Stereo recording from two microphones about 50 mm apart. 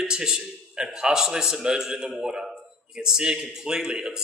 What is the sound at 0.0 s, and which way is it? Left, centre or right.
Speech, centre.